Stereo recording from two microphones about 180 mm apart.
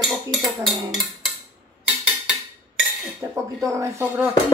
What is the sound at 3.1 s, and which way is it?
Dishes, 15° right (ahead or behind).